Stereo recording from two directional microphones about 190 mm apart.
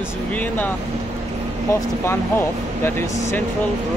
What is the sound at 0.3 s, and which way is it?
Speech, 10° left (ahead or behind).